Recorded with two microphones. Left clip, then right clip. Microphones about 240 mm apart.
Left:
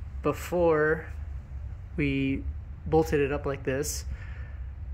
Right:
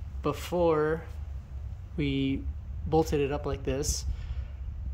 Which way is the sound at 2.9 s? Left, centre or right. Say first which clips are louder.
Left 2 dB; centre.